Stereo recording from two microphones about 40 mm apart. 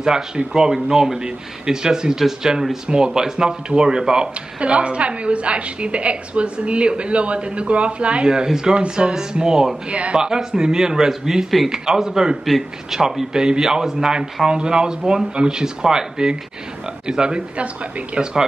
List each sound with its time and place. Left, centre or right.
0.0 s a woman's voice: centre
9.8 s speech: right
10.1 s a man's voice: centre